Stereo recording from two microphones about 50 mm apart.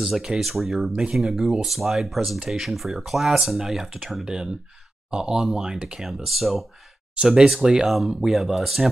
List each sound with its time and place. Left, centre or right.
0.0 s speech: centre
5.1 s speech: centre
6.0 s speech: centre
7.2 s speech: centre